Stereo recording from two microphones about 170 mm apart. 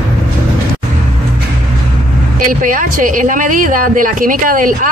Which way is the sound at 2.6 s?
50° right (ahead or behind).